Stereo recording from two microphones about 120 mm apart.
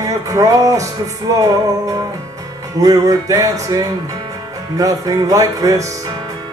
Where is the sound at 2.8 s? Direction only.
30° right (ahead or behind).